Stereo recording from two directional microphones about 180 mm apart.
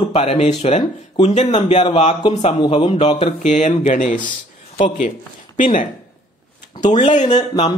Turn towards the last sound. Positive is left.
turn(degrees=20)  # may be behind; listen again after turning